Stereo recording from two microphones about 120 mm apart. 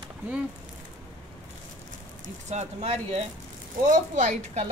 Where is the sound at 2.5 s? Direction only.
70° right (ahead or behind).